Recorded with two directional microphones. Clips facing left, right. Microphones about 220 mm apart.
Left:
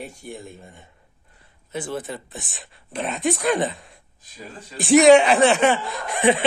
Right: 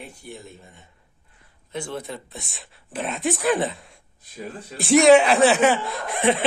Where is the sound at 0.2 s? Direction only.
50° left (ahead or behind).